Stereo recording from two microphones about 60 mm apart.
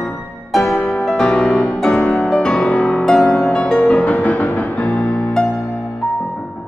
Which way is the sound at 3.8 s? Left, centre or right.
Left.